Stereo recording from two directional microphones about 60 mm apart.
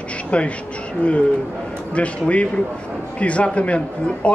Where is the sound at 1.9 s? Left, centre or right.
Left.